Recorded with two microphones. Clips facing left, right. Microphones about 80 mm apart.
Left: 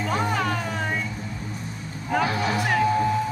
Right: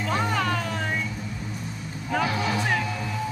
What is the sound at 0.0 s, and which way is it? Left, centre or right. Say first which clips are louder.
Music: left 1 dB; centre.